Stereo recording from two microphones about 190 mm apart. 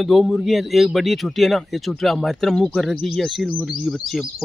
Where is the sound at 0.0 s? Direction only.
Centre (ahead or behind).